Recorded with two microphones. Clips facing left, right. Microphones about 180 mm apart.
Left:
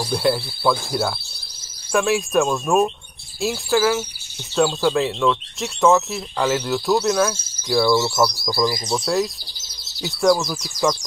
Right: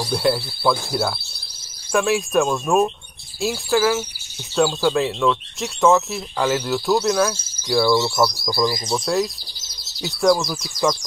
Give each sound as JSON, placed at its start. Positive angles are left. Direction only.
{"t": 0.0, "sound": "speech", "side_deg": 0}